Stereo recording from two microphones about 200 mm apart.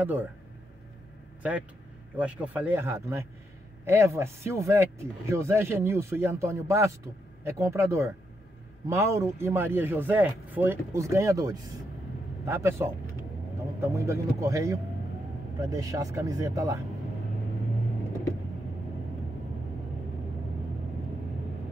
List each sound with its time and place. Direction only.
0.0 s speech: 10° right (ahead or behind)
2.1 s speech: 5° right (ahead or behind)